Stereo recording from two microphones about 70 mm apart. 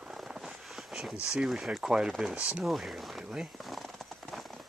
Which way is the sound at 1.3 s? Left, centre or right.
Centre.